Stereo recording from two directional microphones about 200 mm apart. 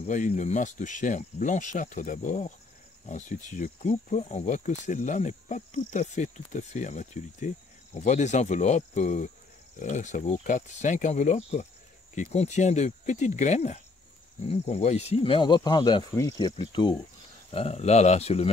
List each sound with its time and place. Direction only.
0.0 s speech: 35° left (ahead or behind)